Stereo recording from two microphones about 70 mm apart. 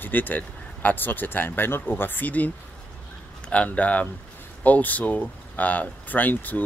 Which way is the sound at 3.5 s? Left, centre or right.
Centre.